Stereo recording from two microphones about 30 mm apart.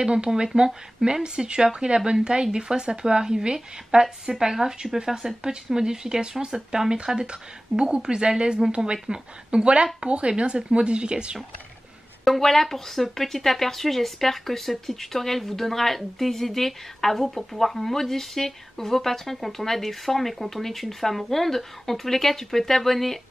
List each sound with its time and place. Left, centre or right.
0.0 s speech: right
9.5 s speech: right
12.3 s speech: centre